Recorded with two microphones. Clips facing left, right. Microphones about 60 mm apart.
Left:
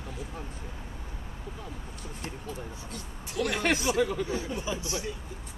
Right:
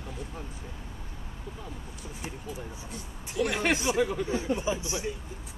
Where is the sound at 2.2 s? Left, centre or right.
Centre.